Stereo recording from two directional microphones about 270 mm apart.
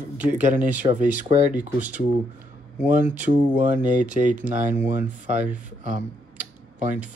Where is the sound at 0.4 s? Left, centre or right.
Right.